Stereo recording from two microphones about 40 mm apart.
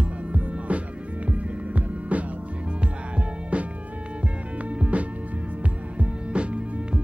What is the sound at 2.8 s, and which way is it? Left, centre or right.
Music, right.